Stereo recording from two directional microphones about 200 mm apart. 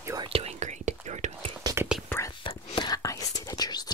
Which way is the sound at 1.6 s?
10° right (ahead or behind).